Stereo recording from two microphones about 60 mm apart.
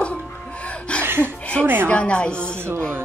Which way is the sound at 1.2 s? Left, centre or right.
Left.